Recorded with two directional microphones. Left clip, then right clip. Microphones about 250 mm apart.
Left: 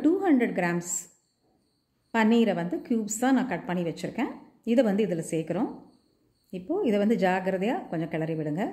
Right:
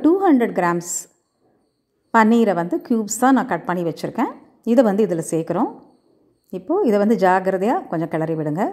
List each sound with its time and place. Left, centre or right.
0.0 s a woman's voice: centre